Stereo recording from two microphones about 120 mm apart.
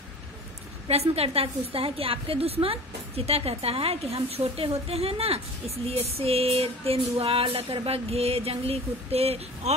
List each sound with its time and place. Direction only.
0.8 s music: 60° right (ahead or behind)